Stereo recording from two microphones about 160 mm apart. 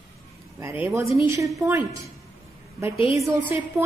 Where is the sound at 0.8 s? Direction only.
15° right (ahead or behind).